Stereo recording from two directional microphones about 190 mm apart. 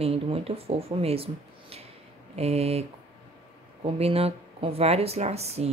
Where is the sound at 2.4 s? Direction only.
35° right (ahead or behind).